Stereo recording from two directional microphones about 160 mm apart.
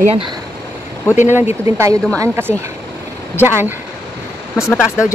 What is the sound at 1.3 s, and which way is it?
Speech, 15° right (ahead or behind).